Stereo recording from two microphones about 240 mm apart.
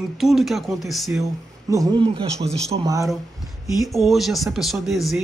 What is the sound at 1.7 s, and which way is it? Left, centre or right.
A man's voice, centre.